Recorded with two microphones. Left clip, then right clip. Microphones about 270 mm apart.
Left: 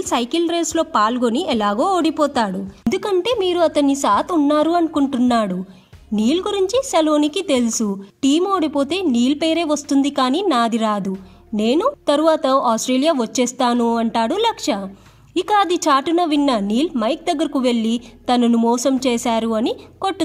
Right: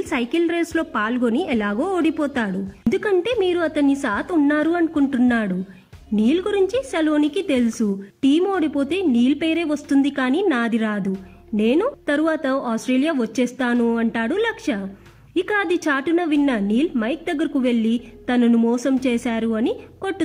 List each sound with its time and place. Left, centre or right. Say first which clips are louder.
0.1 s a woman's voice: left 3 dB; centre